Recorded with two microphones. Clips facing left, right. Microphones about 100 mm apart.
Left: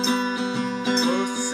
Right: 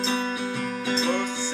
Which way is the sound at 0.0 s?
25° left (ahead or behind).